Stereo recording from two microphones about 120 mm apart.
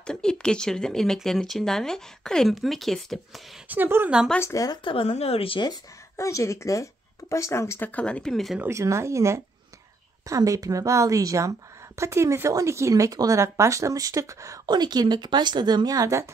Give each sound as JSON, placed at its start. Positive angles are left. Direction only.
{"t": 0.0, "sound": "speech", "side_deg": 5}
{"t": 3.6, "sound": "speech", "side_deg": -15}
{"t": 4.4, "sound": "speech", "side_deg": 25}
{"t": 4.8, "sound": "a woman's voice", "side_deg": 50}
{"t": 6.1, "sound": "speech", "side_deg": 25}
{"t": 8.5, "sound": "speech", "side_deg": -25}
{"t": 14.7, "sound": "speech", "side_deg": -35}